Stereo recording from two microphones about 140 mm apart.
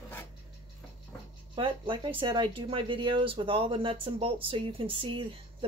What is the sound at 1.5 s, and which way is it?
A woman's voice, 35° right (ahead or behind).